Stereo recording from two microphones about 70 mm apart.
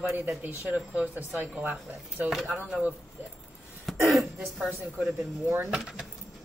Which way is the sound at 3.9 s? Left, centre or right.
Centre.